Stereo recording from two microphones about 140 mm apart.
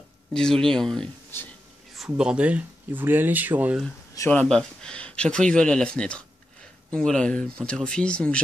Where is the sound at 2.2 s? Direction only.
5° right (ahead or behind).